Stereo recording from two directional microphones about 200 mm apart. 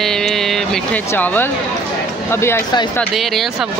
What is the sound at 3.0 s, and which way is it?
Speech, centre (ahead or behind).